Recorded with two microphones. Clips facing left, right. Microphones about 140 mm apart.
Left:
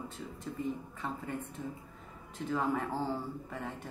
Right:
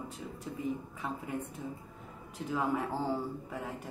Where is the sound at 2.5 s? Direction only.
10° right (ahead or behind).